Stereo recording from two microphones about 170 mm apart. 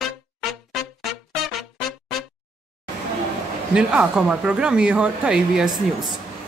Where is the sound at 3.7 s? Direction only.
5° right (ahead or behind).